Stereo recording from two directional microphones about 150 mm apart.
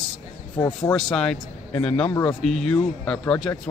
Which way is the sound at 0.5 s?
30° left (ahead or behind).